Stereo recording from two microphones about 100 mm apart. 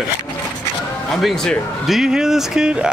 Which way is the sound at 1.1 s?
Centre (ahead or behind).